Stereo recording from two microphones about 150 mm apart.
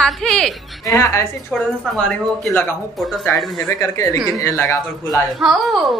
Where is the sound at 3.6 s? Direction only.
20° left (ahead or behind).